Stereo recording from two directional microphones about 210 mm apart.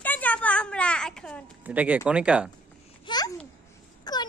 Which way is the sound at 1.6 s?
5° right (ahead or behind).